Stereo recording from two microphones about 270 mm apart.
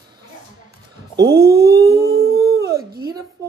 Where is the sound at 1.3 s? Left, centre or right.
Right.